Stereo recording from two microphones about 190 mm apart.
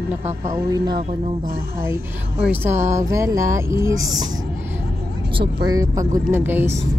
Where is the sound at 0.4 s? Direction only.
20° right (ahead or behind).